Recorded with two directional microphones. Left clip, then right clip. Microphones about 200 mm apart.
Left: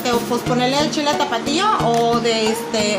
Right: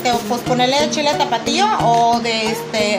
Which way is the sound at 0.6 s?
35° right (ahead or behind).